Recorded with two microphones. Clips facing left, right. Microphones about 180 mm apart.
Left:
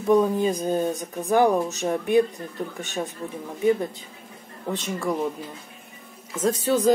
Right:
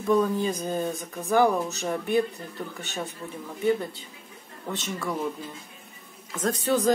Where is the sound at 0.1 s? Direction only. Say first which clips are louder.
Left 4 dB; 20° left (ahead or behind).